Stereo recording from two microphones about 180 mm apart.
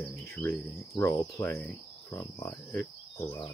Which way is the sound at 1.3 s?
15° left (ahead or behind).